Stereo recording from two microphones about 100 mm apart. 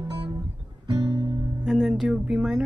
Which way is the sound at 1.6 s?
5° right (ahead or behind).